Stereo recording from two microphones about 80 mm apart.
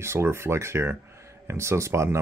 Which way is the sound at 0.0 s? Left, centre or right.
Right.